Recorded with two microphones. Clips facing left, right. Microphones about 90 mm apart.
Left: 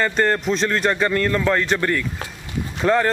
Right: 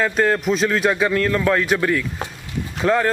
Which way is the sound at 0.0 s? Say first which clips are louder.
Right 1 dB; centre (ahead or behind).